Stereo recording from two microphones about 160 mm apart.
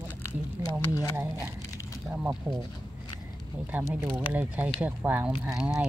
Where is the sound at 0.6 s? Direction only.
20° left (ahead or behind).